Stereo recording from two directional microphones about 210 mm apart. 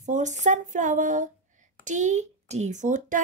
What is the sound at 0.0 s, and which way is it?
Speech, 35° right (ahead or behind).